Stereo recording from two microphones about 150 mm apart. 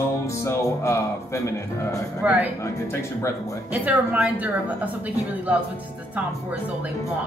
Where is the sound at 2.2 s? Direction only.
10° right (ahead or behind).